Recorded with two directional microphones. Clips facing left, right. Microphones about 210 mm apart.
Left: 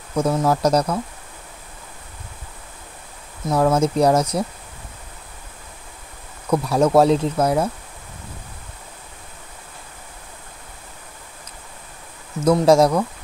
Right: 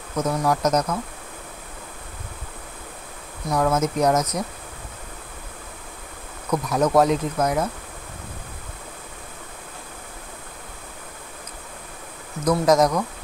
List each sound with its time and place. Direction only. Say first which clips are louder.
0.1 s speech: left 3 dB; 25° left (ahead or behind)
3.4 s speech: left 4 dB; 25° left (ahead or behind)
6.5 s speech: left 3 dB; 30° left (ahead or behind)
12.4 s speech: left 4 dB; 25° left (ahead or behind)